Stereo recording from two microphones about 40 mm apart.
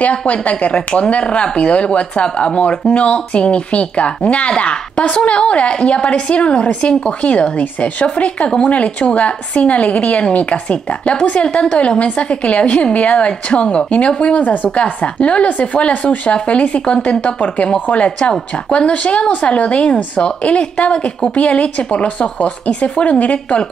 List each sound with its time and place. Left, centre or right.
0.0 s a woman's voice: left
14.4 s a woman's voice: left
15.1 s a woman's voice: left